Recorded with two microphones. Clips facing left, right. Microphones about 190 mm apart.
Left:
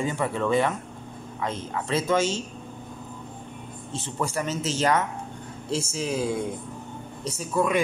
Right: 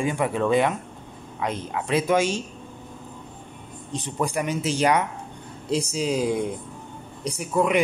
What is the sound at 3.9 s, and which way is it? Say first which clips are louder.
Speech: right 3 dB; 15° right (ahead or behind).